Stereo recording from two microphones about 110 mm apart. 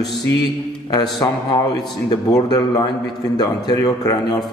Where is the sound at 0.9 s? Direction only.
40° left (ahead or behind).